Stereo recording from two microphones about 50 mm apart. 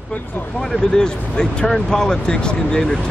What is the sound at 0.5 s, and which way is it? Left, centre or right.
Speech, centre.